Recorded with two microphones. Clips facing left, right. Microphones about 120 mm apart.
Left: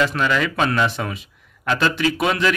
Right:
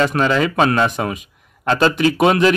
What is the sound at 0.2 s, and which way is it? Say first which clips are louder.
Speech: right 4 dB; 30° right (ahead or behind).